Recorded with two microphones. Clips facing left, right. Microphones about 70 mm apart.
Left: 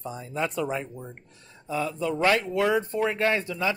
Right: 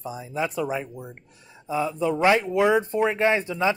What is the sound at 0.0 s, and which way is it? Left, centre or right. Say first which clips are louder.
Speech: right 2 dB; centre.